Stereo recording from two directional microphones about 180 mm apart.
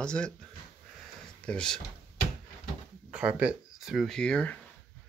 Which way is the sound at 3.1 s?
5° right (ahead or behind).